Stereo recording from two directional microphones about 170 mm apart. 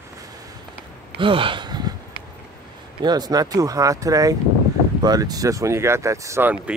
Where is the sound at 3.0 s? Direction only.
25° right (ahead or behind).